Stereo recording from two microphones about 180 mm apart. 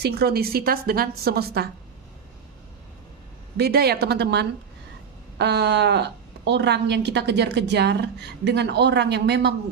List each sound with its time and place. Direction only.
0.0 s a woman's voice: 60° right (ahead or behind)
3.5 s a woman's voice: 60° right (ahead or behind)